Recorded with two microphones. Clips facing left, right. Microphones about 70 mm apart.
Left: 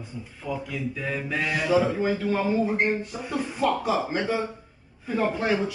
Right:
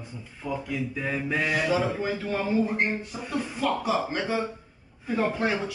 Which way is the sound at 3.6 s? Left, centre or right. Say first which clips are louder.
Left 2 dB; centre.